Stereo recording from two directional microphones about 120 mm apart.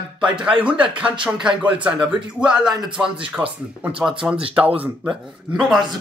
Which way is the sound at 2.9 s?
5° right (ahead or behind).